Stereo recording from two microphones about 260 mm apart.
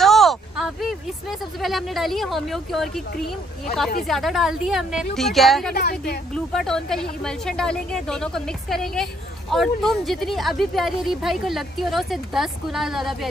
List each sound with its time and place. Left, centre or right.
0.0 s a sound: centre
1.6 s a woman's voice: centre
4.1 s a woman's voice: centre
5.8 s a woman's voice: left
6.3 s a woman's voice: centre